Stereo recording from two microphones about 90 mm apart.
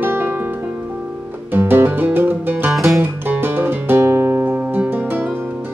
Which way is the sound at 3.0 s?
20° right (ahead or behind).